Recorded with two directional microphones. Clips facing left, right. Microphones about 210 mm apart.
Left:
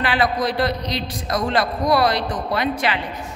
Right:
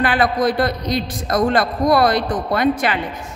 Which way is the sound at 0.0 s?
50° right (ahead or behind).